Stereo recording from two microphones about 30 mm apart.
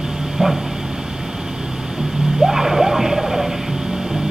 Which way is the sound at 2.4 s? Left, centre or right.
Centre.